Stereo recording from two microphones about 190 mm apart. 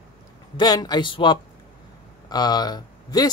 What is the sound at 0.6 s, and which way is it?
Speech, 20° left (ahead or behind).